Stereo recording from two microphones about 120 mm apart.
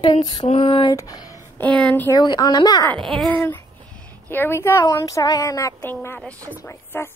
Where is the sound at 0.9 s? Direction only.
30° left (ahead or behind).